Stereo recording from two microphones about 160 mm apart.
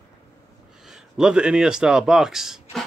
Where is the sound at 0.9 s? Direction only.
5° right (ahead or behind).